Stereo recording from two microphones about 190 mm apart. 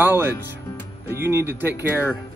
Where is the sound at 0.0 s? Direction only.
10° right (ahead or behind).